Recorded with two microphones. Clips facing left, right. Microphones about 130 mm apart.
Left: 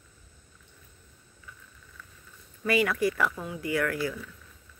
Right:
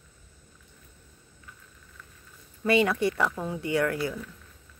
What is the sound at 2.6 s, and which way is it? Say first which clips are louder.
A woman's voice: right 2 dB; 25° right (ahead or behind).